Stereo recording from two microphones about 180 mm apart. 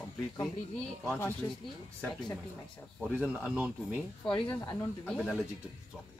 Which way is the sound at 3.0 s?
5° right (ahead or behind).